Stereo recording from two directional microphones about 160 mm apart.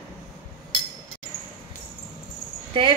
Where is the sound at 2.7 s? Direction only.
30° right (ahead or behind).